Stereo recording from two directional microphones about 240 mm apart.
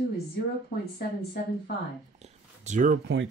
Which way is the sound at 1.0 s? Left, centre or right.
Left.